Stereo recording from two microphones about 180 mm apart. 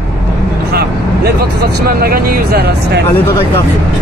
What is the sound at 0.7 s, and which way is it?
Vehicle, 60° right (ahead or behind).